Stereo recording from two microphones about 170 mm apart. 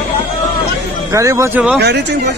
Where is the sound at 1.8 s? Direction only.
80° right.